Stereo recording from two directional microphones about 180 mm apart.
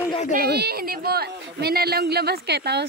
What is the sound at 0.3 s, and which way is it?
A woman's voice, 60° right (ahead or behind).